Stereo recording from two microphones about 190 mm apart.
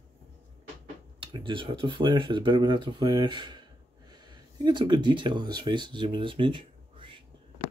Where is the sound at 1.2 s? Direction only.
25° right (ahead or behind).